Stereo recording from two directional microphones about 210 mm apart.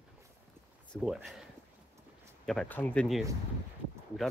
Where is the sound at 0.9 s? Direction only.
Centre (ahead or behind).